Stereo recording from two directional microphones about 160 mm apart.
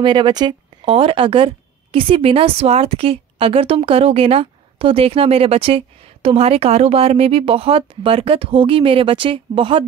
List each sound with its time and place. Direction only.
0.0 s speech: 30° right (ahead or behind)